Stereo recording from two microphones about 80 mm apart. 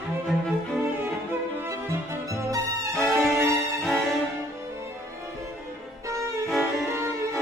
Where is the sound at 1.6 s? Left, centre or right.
Right.